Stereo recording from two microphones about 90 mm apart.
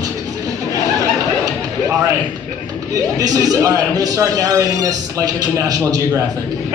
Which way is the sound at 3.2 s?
45° right (ahead or behind).